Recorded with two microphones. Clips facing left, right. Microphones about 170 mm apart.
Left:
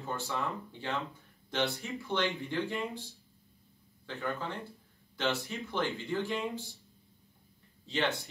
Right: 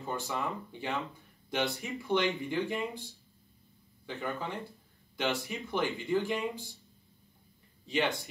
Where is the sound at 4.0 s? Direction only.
15° right (ahead or behind).